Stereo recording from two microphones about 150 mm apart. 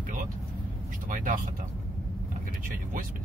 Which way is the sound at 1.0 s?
65° right (ahead or behind).